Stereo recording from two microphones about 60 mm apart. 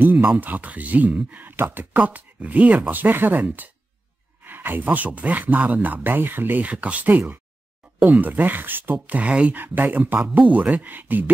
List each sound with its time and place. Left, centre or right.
0.0 s speech: right
4.5 s speech: right
6.6 s speech: right
9.5 s speech: right